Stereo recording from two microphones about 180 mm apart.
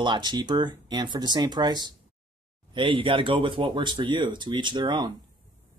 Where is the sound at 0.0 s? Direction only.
25° right (ahead or behind).